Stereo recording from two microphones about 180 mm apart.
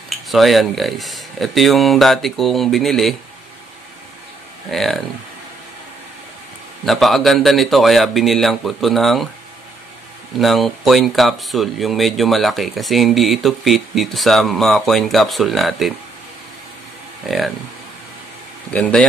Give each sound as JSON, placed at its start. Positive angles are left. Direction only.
{"t": 0.3, "sound": "speech", "side_deg": 0}
{"t": 4.6, "sound": "speech", "side_deg": 0}
{"t": 6.9, "sound": "speech", "side_deg": 0}
{"t": 10.4, "sound": "speech", "side_deg": 0}
{"t": 18.7, "sound": "speech", "side_deg": 5}